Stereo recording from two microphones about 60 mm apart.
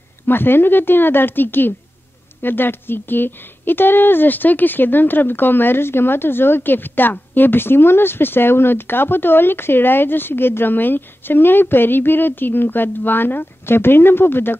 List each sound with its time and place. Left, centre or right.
0.3 s a woman's voice: left